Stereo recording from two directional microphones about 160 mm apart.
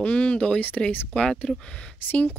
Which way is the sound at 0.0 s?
5° left (ahead or behind).